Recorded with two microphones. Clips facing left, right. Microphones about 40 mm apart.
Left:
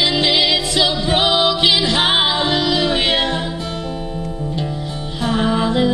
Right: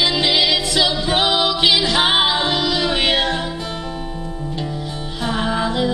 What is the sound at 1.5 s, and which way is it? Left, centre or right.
Music, left.